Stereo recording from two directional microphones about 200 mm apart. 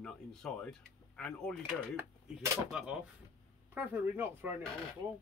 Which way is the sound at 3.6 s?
10° right (ahead or behind).